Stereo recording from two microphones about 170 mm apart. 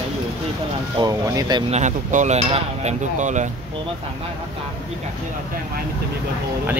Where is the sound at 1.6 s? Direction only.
45° right (ahead or behind).